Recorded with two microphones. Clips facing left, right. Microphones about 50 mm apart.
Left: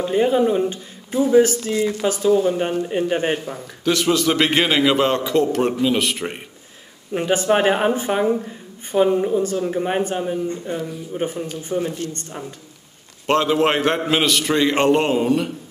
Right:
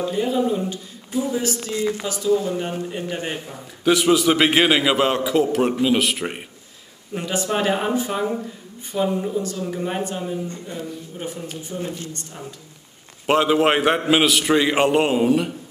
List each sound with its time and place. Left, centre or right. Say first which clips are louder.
0.1 s speech: left 7 dB; left
3.8 s a man's voice: right 2 dB; centre
7.2 s speech: left 5 dB; left
13.3 s a man's voice: even; centre